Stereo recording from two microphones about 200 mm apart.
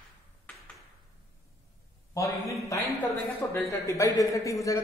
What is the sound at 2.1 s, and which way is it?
A man's voice, 15° left (ahead or behind).